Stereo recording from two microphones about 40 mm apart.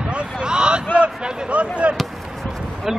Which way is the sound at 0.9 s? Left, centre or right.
Right.